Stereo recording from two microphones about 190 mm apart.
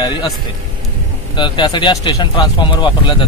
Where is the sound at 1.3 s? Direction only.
25° left (ahead or behind).